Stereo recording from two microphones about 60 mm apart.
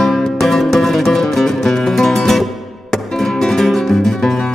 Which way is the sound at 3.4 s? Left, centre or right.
Centre.